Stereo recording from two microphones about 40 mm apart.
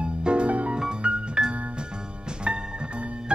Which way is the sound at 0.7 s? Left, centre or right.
Right.